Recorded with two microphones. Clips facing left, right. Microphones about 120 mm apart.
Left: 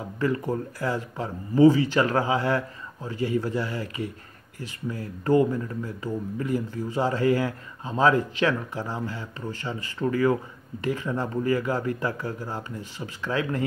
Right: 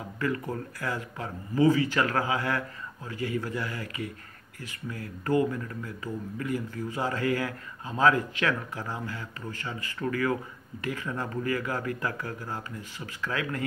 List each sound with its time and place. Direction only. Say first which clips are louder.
0.2 s speech: left 5 dB; 25° left (ahead or behind)